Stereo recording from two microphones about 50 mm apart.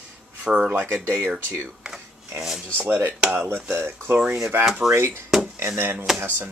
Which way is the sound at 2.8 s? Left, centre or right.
Right.